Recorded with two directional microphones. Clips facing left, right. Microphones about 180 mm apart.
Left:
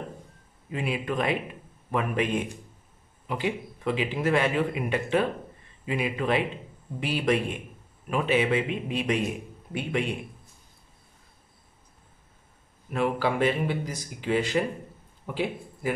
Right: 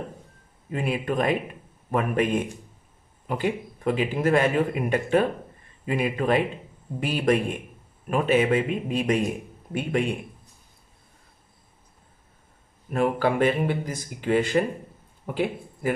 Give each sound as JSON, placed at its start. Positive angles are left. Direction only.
{"t": 0.7, "sound": "a man's voice", "side_deg": -45}
{"t": 12.9, "sound": "a man's voice", "side_deg": -50}